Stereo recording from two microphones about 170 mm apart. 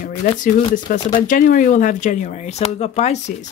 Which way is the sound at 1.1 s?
50° left (ahead or behind).